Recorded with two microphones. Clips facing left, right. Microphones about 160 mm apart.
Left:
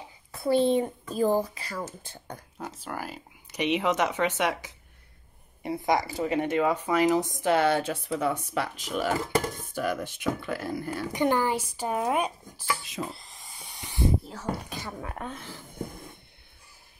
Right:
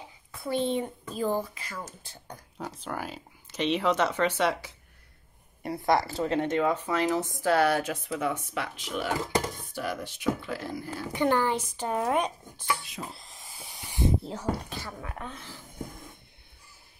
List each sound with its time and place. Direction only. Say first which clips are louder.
0.3 s speech: left 6 dB; 35° left (ahead or behind)
2.6 s speech: right 1 dB; 5° left (ahead or behind); by 11.1 s 60° left (ahead or behind)
11.1 s speech: even; 15° left (ahead or behind)
13.1 s hiss: left 2 dB; centre (ahead or behind)
13.9 s a sound: even; 20° right (ahead or behind)
14.7 s speech: left 1 dB; 15° left (ahead or behind)
15.0 s speech: left 3 dB; 45° left (ahead or behind)